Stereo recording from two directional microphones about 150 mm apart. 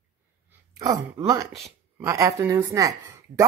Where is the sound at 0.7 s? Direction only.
25° right (ahead or behind).